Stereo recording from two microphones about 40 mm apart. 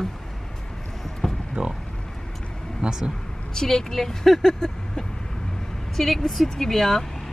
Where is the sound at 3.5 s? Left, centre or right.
Centre.